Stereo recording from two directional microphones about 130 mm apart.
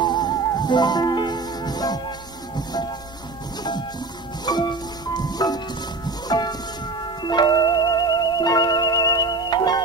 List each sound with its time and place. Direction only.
0.0 s music: 35° left (ahead or behind)
4.5 s music: 30° left (ahead or behind)